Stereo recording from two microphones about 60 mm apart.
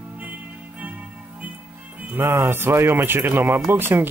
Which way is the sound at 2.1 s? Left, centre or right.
Right.